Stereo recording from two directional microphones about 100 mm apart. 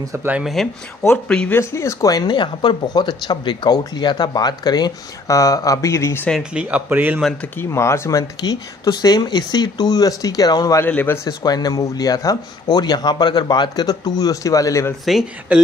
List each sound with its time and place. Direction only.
0.3 s speech: 5° right (ahead or behind)
1.5 s speech: 30° left (ahead or behind)
6.5 s speech: 10° right (ahead or behind)
7.5 s speech: 25° left (ahead or behind)
10.9 s speech: 20° left (ahead or behind)
11.2 s speech: 40° left (ahead or behind)
15.5 s speech: 10° right (ahead or behind)